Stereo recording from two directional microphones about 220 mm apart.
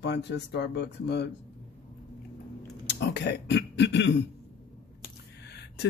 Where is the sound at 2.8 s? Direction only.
50° left (ahead or behind).